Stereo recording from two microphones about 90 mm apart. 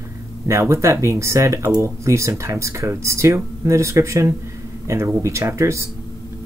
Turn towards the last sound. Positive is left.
turn(degrees=-35)  # may be behind; listen again after turning